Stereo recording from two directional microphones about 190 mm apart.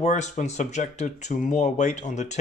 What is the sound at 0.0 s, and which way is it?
Speech, 40° left (ahead or behind).